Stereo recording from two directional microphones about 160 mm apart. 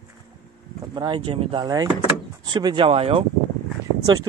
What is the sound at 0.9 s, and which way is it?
Speech, 30° right (ahead or behind).